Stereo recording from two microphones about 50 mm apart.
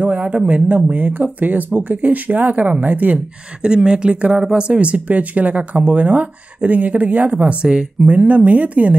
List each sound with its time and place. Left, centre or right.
0.0 s a sound: right
0.5 s speech: right
3.6 s speech: centre